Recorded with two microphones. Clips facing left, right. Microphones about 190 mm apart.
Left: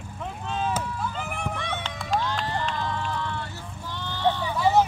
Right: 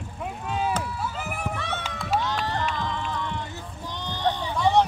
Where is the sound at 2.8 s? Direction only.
15° right (ahead or behind).